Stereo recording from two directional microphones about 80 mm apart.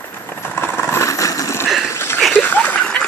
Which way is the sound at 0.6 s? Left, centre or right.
Left.